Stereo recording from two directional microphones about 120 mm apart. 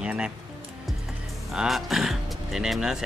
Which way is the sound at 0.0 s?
10° right (ahead or behind).